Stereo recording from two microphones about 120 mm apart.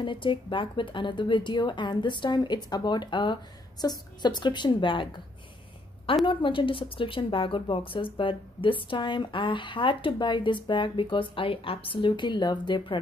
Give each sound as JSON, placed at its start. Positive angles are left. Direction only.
{"t": 0.0, "sound": "speech", "side_deg": 45}
{"t": 6.2, "sound": "a woman's voice", "side_deg": 45}